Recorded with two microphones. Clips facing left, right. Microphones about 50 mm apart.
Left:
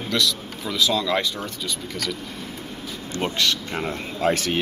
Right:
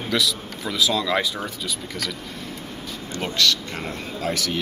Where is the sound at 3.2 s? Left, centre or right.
Centre; by 4.6 s left.